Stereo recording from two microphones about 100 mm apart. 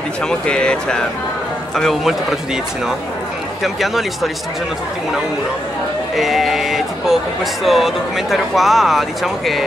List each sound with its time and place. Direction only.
0.3 s speech: 10° left (ahead or behind)
3.6 s speech: centre (ahead or behind)
6.1 s a sound: centre (ahead or behind)
7.6 s speech: centre (ahead or behind)